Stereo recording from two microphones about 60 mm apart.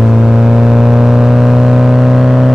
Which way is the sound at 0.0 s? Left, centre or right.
Centre.